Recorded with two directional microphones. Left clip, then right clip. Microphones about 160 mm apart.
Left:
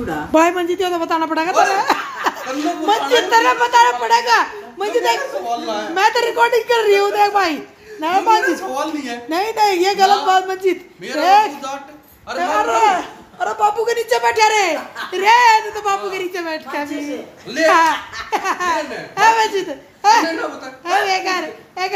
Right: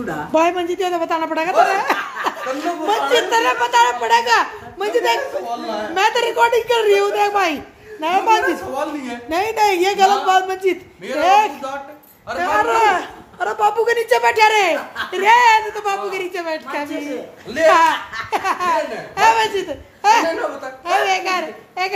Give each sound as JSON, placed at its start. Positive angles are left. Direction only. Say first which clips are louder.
{"t": 0.3, "sound": "a child's voice", "louder": "left 2 dB", "side_deg": 10}
{"t": 2.3, "sound": "chuckle", "louder": "left 4 dB", "side_deg": 25}
{"t": 2.9, "sound": "a child's voice", "louder": "left 2 dB", "side_deg": 20}